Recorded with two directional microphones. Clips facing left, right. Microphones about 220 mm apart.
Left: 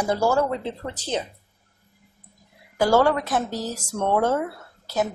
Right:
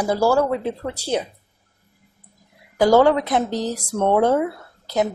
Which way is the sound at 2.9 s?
20° right (ahead or behind).